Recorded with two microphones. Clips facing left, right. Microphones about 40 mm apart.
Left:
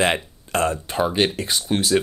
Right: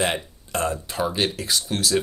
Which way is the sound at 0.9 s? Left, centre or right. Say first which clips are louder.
Left 4 dB; left.